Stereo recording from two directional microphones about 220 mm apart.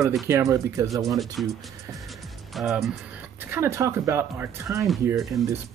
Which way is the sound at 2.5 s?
Centre (ahead or behind).